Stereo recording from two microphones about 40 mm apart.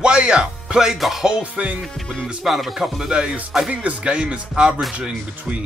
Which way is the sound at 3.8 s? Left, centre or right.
Right.